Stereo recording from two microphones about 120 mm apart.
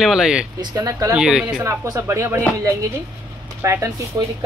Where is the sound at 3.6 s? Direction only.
20° right (ahead or behind).